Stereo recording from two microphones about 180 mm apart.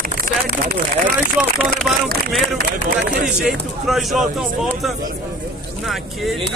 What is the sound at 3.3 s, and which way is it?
Speech, 5° right (ahead or behind).